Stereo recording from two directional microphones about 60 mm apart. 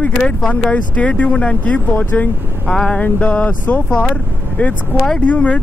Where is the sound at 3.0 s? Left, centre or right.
Left.